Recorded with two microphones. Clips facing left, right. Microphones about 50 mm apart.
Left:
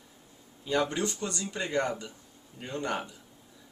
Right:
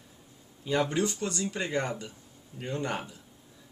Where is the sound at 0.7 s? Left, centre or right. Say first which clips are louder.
Right 1 dB; centre.